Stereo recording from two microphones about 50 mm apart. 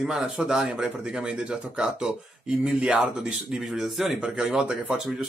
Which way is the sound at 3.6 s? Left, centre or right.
Centre.